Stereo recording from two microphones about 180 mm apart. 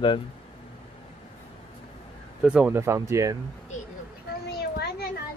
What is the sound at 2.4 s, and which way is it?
Speech, 5° right (ahead or behind).